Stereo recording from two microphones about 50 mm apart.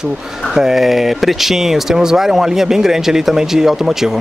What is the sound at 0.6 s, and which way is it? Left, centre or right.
Speech, centre.